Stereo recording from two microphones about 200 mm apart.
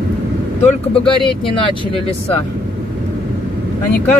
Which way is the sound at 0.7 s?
25° left (ahead or behind).